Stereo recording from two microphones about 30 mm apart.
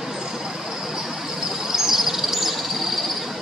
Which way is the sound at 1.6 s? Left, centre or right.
Centre.